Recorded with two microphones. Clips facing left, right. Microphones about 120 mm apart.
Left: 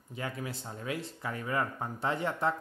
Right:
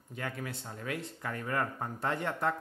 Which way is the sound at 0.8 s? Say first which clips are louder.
Left 1 dB; 10° left (ahead or behind).